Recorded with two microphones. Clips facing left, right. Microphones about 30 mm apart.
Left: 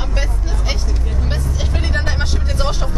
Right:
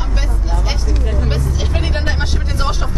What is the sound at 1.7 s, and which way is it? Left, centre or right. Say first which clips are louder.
Vehicle: left 1 dB; centre.